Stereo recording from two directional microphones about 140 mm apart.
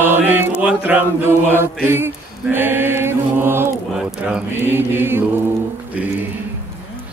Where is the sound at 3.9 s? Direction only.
5° right (ahead or behind).